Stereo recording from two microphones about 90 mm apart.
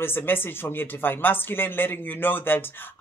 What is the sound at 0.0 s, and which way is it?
Speech, 25° left (ahead or behind).